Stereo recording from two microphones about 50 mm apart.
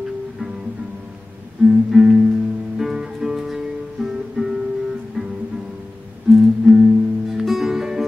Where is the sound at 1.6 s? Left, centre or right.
Centre.